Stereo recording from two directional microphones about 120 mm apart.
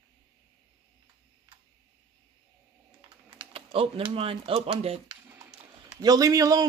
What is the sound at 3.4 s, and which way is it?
Speech, 50° right (ahead or behind).